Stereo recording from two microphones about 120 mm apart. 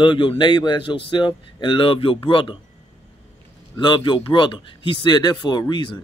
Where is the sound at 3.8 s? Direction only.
40° left (ahead or behind).